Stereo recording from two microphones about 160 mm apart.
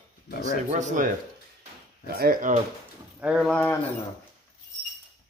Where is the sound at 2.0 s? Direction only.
70° right (ahead or behind).